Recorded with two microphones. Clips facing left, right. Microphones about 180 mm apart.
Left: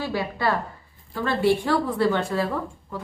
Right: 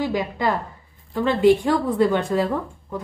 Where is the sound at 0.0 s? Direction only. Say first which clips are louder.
Right 3 dB; 15° right (ahead or behind).